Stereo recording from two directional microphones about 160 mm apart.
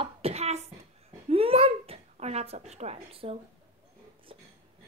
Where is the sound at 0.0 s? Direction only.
40° right (ahead or behind).